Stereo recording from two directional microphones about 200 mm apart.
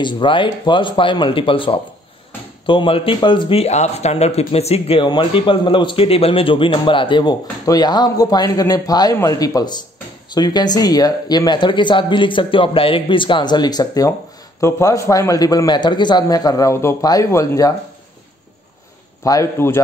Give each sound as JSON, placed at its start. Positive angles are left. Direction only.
{"t": 0.0, "sound": "speech", "side_deg": 25}
{"t": 19.2, "sound": "speech", "side_deg": 15}